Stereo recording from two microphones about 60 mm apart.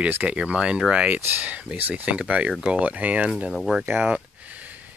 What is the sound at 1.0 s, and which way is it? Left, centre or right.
Speech, right.